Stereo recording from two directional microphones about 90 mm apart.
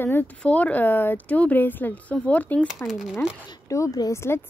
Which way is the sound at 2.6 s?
5° right (ahead or behind).